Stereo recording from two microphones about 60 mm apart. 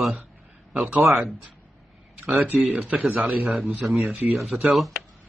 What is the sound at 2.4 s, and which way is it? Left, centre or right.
Speech, right.